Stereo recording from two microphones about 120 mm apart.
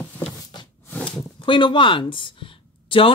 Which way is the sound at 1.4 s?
40° left (ahead or behind).